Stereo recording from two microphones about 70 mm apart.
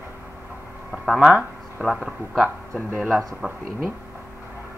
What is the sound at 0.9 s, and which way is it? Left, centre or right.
Speech, centre.